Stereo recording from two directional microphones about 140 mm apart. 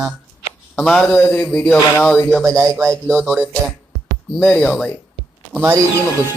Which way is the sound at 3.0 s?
Centre (ahead or behind).